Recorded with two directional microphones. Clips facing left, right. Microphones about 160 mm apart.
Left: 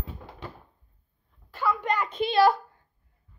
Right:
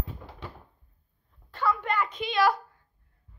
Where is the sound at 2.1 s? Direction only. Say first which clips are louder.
Left 6 dB; 30° left (ahead or behind).